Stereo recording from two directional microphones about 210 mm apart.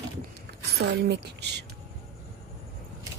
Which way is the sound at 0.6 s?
50° right (ahead or behind).